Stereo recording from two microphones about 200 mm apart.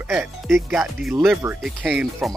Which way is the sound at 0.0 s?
5° right (ahead or behind).